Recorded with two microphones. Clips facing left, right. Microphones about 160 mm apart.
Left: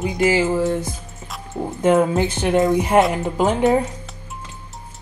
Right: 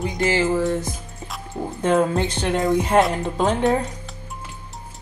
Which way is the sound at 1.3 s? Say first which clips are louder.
Left 2 dB; 5° left (ahead or behind).